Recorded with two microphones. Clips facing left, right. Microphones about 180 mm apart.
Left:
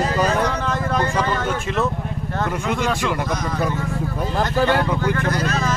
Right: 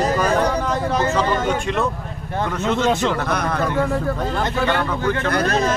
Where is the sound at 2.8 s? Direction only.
20° right (ahead or behind).